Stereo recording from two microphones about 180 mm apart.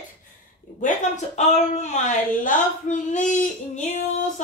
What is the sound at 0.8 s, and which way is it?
Speech, 40° left (ahead or behind).